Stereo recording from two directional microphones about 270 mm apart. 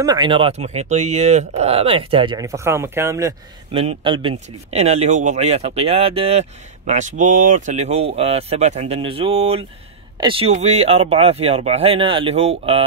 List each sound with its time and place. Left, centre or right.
0.0 s speech: centre